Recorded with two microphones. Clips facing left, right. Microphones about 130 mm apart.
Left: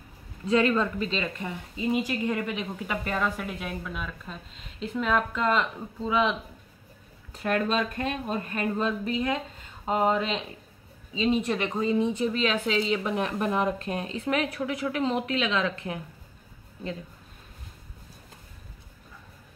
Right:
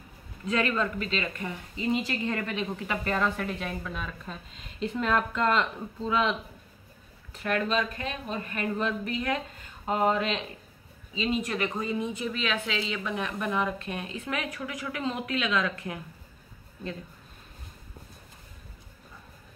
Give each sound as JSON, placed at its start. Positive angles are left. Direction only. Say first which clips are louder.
{"t": 0.5, "sound": "speech", "louder": "left 4 dB", "side_deg": 30}
{"t": 1.2, "sound": "speech", "louder": "left 1 dB", "side_deg": 15}
{"t": 7.3, "sound": "speech", "louder": "left 2 dB", "side_deg": 40}
{"t": 11.2, "sound": "speech", "louder": "left 4 dB", "side_deg": 25}